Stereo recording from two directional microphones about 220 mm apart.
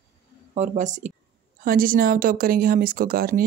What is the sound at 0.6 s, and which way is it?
Speech, 35° right (ahead or behind).